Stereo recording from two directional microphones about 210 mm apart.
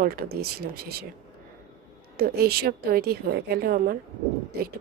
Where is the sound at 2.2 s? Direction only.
45° right (ahead or behind).